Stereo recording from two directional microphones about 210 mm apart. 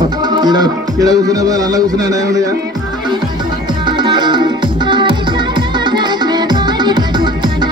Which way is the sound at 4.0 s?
20° right (ahead or behind).